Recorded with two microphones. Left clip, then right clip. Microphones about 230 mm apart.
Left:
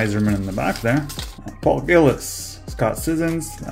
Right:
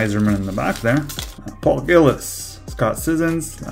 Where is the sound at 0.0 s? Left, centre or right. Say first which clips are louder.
Right 2 dB; centre.